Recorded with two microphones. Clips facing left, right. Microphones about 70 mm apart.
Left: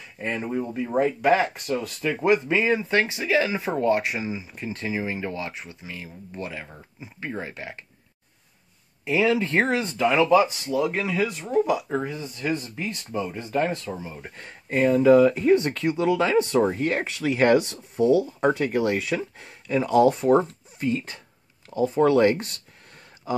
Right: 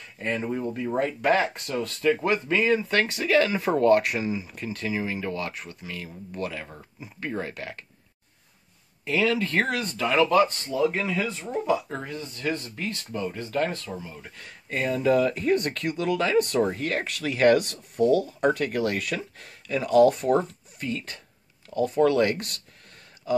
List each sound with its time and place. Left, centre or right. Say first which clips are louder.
0.0 s speech: even; centre
9.0 s speech: left 2 dB; centre